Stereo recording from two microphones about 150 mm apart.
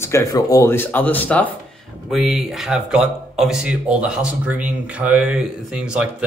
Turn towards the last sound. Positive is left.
turn(degrees=-5)  # may be behind; listen again after turning